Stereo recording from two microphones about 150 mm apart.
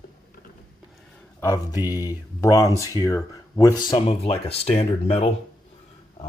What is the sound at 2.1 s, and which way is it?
Speech, 20° left (ahead or behind).